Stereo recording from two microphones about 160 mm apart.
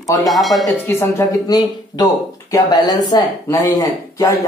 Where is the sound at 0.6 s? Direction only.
15° left (ahead or behind).